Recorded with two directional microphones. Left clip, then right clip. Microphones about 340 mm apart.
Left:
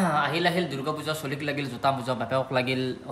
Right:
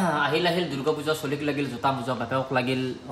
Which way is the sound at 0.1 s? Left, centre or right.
Centre.